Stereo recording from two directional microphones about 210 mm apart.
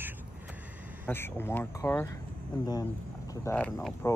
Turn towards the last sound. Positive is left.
turn(degrees=10)  # may be behind; listen again after turning